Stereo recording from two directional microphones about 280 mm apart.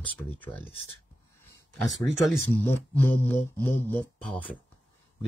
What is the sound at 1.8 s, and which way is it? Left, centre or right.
Speech, centre.